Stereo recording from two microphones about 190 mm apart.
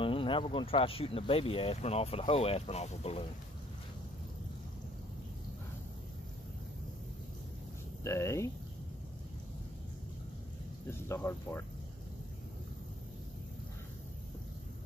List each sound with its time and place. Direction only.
0.0 s speech: 25° left (ahead or behind)
8.0 s speech: 15° left (ahead or behind)
10.9 s speech: 10° left (ahead or behind)